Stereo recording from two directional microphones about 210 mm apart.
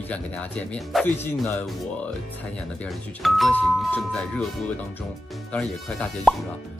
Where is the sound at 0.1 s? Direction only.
5° left (ahead or behind).